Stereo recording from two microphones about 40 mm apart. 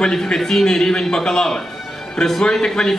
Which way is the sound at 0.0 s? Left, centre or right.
Centre.